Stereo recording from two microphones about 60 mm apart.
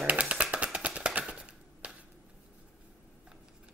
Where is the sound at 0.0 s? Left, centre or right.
Right.